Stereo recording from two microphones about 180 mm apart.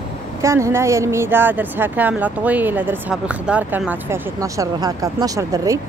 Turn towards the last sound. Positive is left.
turn(degrees=-20)  # may be behind; listen again after turning